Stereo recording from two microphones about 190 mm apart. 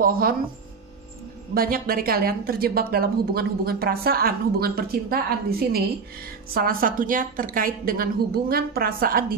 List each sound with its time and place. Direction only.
0.0 s a woman's voice: 50° right (ahead or behind)
1.5 s a woman's voice: 50° right (ahead or behind)